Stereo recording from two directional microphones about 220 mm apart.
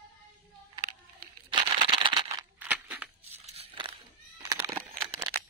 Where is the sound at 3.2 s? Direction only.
30° right (ahead or behind).